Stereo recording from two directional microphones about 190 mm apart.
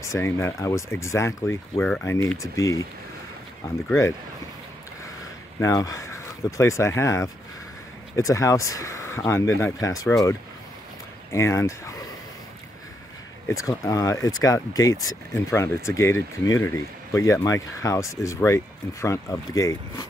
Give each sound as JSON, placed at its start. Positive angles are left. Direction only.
{"t": 0.0, "sound": "speech", "side_deg": 15}
{"t": 5.6, "sound": "speech", "side_deg": 15}
{"t": 11.3, "sound": "speech", "side_deg": 15}
{"t": 13.5, "sound": "speech", "side_deg": 15}